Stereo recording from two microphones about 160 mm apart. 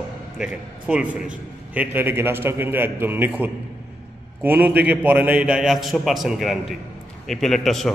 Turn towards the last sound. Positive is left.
turn(degrees=0)  # may be behind; listen again after turning